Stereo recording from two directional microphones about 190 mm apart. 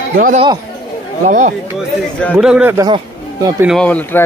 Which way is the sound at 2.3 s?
5° right (ahead or behind).